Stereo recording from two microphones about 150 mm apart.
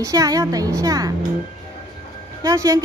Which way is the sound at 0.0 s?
25° right (ahead or behind).